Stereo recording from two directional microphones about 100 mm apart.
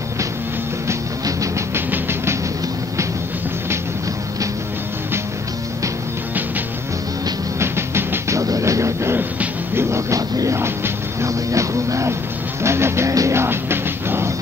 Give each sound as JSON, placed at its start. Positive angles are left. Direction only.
{"t": 0.8, "sound": "music", "side_deg": -35}
{"t": 7.5, "sound": "music", "side_deg": -25}